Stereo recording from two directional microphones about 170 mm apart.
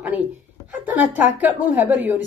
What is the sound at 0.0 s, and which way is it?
Speech, 10° right (ahead or behind).